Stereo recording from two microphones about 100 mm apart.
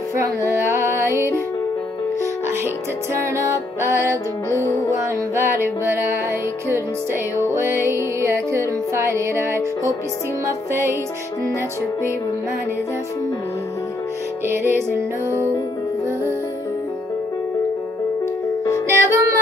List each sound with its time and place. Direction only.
0.1 s music: 30° right (ahead or behind)
2.4 s music: 25° right (ahead or behind)
7.3 s music: 25° right (ahead or behind)
14.5 s music: 20° right (ahead or behind)
18.9 s music: 30° right (ahead or behind)